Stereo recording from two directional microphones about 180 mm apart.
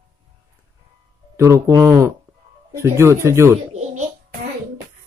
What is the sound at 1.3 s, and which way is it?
Speech, 15° right (ahead or behind).